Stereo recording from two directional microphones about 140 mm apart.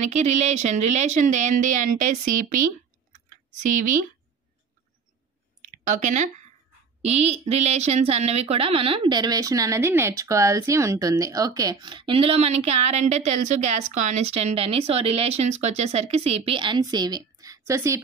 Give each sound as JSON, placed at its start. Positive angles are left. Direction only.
{"t": 0.0, "sound": "a woman's voice", "side_deg": -55}
{"t": 5.6, "sound": "a sound", "side_deg": -60}
{"t": 7.0, "sound": "a woman's voice", "side_deg": -50}